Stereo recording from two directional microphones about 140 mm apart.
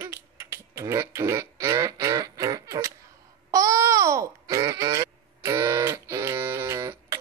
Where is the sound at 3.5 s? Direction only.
25° right (ahead or behind).